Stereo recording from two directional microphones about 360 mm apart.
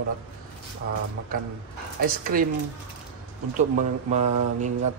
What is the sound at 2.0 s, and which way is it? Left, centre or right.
Speech, right.